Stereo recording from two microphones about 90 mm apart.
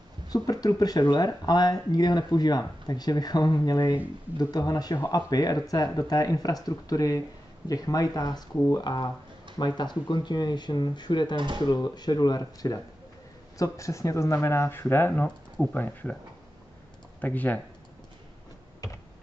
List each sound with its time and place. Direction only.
0.3 s speech: 45° left (ahead or behind)
8.8 s speech: 55° left (ahead or behind)
11.3 s speech: 65° right (ahead or behind)
11.6 s speech: 50° left (ahead or behind)
13.6 s speech: 35° left (ahead or behind); by 16.2 s 20° left (ahead or behind)
17.2 s speech: 20° left (ahead or behind)